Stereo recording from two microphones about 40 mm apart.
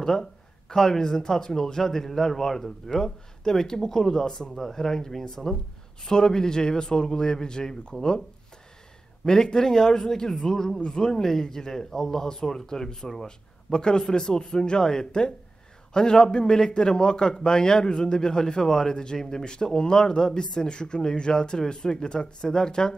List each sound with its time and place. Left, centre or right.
0.0 s speech: centre
9.2 s a man's voice: centre